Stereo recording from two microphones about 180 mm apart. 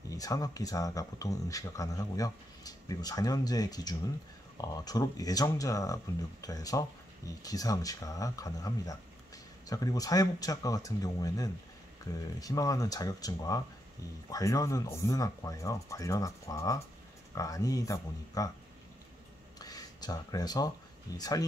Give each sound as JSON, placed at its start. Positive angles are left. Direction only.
{"t": 0.1, "sound": "speech", "side_deg": 20}
{"t": 19.6, "sound": "speech", "side_deg": 20}